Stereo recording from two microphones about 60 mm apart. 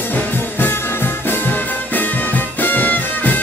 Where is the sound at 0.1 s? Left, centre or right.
Left.